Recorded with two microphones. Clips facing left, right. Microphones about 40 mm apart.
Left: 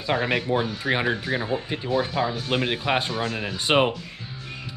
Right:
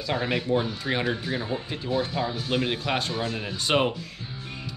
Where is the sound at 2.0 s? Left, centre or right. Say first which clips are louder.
Left 3 dB; centre.